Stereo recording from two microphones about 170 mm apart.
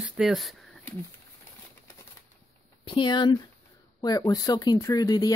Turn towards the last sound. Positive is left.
turn(degrees=20)  # may be behind; listen again after turning